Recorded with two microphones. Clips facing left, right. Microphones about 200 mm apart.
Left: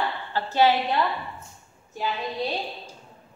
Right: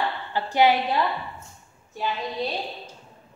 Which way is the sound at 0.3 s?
15° right (ahead or behind).